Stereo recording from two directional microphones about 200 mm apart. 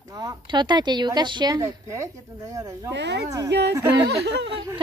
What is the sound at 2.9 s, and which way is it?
Speech, 60° right (ahead or behind).